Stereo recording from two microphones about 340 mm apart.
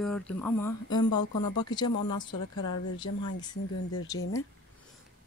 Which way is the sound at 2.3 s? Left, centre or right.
Left.